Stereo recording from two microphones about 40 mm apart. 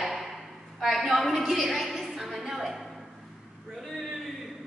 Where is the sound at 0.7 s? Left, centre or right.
Centre.